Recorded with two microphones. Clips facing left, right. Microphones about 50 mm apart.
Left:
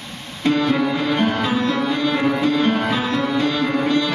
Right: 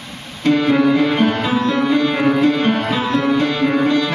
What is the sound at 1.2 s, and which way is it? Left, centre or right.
Music, right.